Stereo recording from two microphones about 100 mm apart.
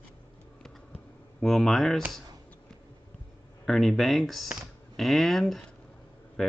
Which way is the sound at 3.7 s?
Centre (ahead or behind).